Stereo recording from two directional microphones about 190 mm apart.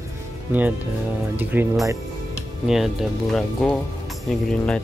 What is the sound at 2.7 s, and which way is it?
Speech, centre (ahead or behind).